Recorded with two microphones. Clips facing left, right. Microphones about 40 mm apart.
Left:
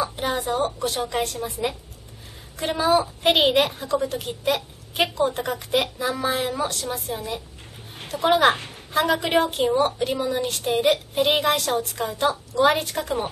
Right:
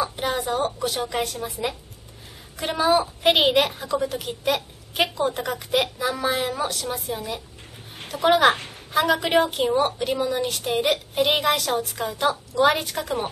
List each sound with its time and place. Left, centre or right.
0.0 s a woman's voice: centre